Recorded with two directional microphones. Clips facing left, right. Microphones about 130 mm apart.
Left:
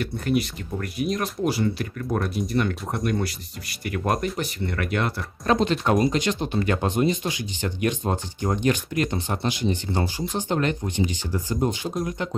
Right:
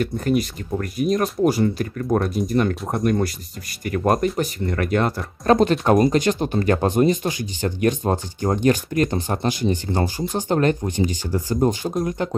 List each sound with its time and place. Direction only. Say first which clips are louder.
0.0 s speech: right 3 dB; 40° right (ahead or behind)